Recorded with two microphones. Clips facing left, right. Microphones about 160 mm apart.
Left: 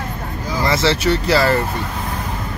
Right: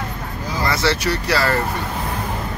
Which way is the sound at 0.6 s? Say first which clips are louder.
Left 3 dB; 20° left (ahead or behind).